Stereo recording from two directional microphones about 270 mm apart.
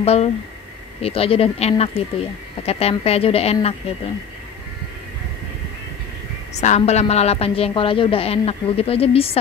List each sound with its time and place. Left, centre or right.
0.0 s a woman's voice: left
6.5 s a woman's voice: left